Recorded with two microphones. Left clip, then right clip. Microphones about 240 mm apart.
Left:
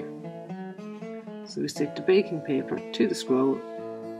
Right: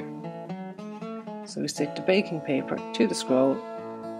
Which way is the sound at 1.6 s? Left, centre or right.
Centre.